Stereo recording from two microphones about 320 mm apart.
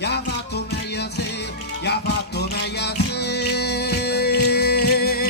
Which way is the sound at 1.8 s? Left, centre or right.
Left.